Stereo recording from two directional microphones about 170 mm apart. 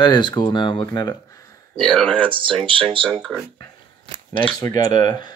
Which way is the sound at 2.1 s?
30° right (ahead or behind).